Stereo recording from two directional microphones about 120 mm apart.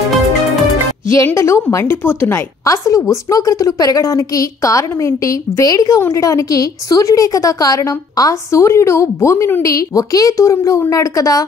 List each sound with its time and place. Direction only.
1.0 s a woman's voice: 25° left (ahead or behind)